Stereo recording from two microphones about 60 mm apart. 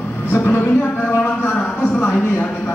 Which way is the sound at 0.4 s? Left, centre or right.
Left.